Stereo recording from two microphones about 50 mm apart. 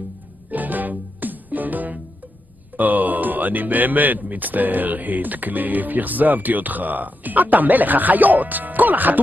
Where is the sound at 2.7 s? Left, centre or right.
Right.